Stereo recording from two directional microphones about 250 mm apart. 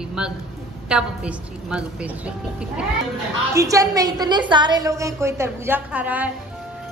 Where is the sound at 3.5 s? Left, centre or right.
Centre.